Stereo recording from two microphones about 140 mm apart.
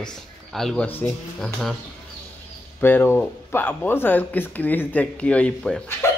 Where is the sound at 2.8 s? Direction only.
15° left (ahead or behind).